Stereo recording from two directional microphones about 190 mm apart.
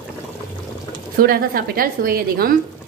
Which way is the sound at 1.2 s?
50° right (ahead or behind).